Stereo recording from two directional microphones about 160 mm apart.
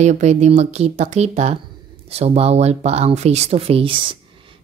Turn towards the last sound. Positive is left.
turn(degrees=-30)  # may be behind; listen again after turning